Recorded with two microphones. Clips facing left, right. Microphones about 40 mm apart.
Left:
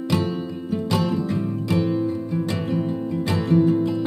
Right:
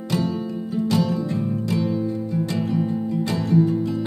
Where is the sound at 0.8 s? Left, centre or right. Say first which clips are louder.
Right 1 dB; left.